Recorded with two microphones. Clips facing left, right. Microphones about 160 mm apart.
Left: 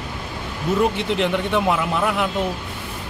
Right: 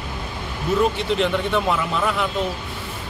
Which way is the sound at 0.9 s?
15° left (ahead or behind).